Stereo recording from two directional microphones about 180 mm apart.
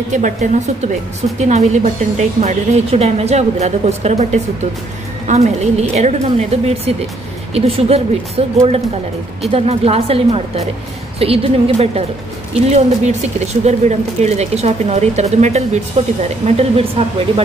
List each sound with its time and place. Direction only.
0.1 s speech: 40° right (ahead or behind)